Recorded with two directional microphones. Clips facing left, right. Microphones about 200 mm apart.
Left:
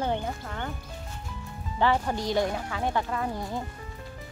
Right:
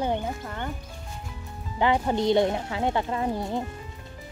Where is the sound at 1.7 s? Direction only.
15° right (ahead or behind).